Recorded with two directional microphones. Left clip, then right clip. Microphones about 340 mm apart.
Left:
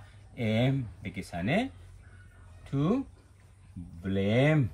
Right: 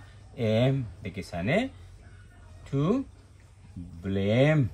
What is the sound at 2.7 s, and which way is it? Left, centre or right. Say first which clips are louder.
Speech: right 2 dB; centre.